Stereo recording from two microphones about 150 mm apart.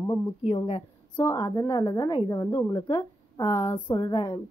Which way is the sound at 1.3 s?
25° left (ahead or behind).